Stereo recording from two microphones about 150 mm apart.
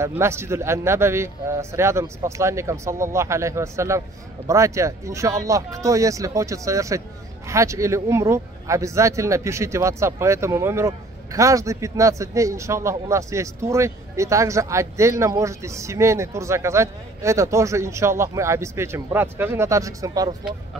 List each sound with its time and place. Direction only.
0.0 s speech: 15° right (ahead or behind)